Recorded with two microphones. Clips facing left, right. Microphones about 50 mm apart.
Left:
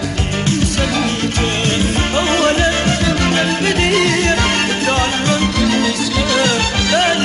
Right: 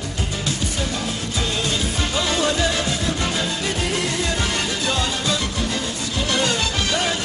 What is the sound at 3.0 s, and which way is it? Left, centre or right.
Music, left.